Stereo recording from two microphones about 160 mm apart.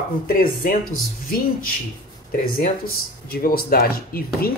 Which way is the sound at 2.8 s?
70° left (ahead or behind).